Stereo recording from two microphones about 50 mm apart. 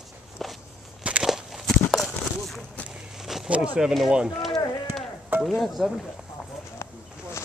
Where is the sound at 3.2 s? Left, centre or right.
Centre.